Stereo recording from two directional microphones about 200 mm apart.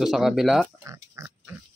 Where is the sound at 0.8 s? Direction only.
15° right (ahead or behind).